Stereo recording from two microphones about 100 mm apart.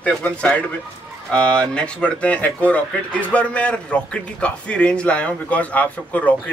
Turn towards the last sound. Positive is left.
turn(degrees=15)  # may be behind; listen again after turning